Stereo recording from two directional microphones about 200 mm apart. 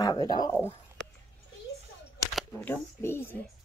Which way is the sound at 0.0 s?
20° left (ahead or behind).